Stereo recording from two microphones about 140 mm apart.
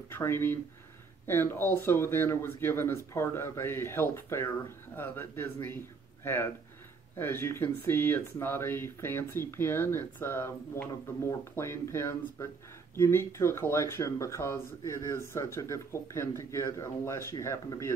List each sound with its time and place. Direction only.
0.1 s speech: 15° left (ahead or behind)